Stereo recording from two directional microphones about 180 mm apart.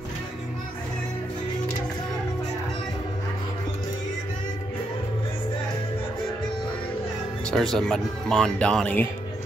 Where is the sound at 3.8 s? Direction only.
25° left (ahead or behind).